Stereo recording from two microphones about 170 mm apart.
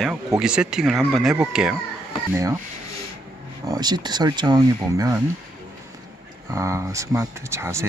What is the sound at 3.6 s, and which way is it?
Speech, 25° right (ahead or behind).